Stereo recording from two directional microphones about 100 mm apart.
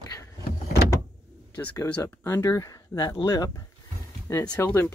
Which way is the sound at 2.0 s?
30° left (ahead or behind).